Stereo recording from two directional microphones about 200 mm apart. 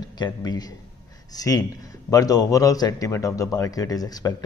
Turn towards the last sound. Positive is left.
turn(degrees=20)  # may be behind; listen again after turning